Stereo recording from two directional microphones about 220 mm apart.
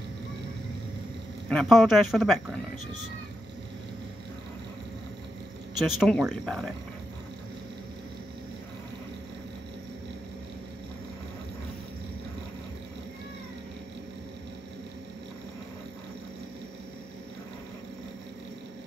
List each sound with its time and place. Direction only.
1.5 s speech: centre (ahead or behind)
5.9 s speech: centre (ahead or behind)